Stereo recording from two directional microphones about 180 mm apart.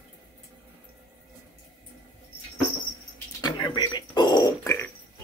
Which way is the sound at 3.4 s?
25° left (ahead or behind).